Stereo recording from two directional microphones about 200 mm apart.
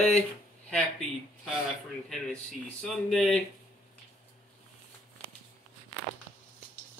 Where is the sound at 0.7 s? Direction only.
Centre (ahead or behind).